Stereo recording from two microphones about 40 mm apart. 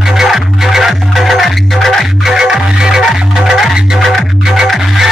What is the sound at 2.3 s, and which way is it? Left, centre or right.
Music, centre.